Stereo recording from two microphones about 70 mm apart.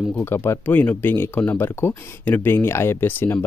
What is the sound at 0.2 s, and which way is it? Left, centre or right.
Speech, left.